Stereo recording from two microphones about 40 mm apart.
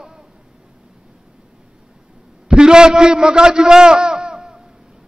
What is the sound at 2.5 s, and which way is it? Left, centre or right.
A man's voice, centre.